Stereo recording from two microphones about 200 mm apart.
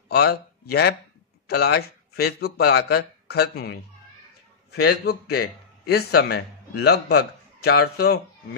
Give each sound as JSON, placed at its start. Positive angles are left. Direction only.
{"t": 0.1, "sound": "a man's voice", "side_deg": 50}